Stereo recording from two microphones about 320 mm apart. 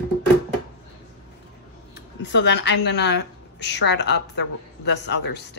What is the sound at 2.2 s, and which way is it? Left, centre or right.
A woman's voice, left.